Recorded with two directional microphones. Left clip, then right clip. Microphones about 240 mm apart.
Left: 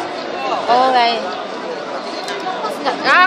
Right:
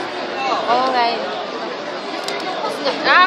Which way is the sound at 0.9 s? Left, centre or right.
Centre.